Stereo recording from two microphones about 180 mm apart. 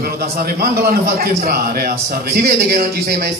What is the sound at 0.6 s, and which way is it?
A man's voice, 60° right (ahead or behind).